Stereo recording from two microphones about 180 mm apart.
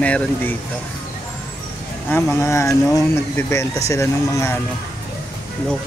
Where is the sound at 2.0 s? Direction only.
10° left (ahead or behind).